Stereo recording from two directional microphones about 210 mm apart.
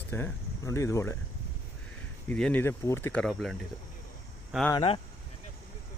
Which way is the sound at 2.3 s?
5° left (ahead or behind).